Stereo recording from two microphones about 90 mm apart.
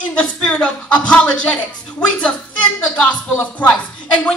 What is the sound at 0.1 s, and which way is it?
A woman's voice, 10° left (ahead or behind).